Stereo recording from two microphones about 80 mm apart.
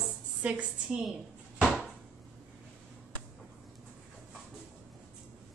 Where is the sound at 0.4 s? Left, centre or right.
Centre.